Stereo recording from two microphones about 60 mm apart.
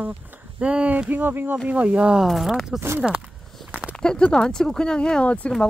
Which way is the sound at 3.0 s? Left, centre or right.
Centre.